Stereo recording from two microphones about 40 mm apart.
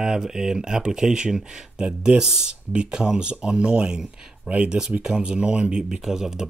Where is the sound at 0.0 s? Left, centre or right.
Centre.